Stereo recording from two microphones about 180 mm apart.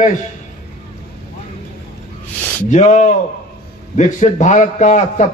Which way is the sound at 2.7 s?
40° left (ahead or behind).